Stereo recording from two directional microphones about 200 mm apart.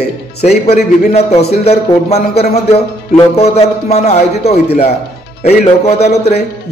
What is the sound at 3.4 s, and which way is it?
A man's voice, 30° left (ahead or behind).